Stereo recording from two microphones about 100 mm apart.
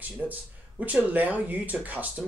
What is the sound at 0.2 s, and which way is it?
Speech, 15° right (ahead or behind).